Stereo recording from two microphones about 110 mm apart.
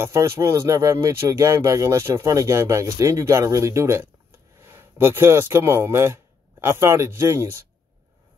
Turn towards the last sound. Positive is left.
turn(degrees=-25)  # may be behind; listen again after turning